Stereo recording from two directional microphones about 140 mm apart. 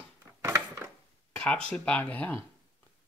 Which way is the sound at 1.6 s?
10° left (ahead or behind).